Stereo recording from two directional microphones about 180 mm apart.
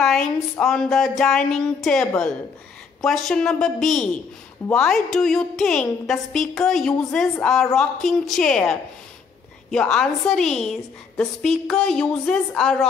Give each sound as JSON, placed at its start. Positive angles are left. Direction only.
{"t": 0.0, "sound": "a woman's voice", "side_deg": 0}
{"t": 9.9, "sound": "a woman's voice", "side_deg": 5}